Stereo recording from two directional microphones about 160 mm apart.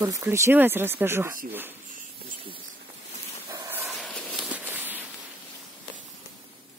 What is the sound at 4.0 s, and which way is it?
Walk, 5° left (ahead or behind).